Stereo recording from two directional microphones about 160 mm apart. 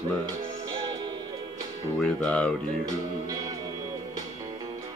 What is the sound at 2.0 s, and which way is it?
Speech, 5° left (ahead or behind).